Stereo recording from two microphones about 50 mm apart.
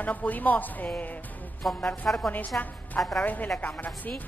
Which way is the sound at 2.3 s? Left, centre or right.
Left.